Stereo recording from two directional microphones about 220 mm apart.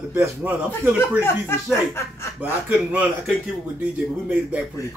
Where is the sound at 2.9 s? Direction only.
5° right (ahead or behind).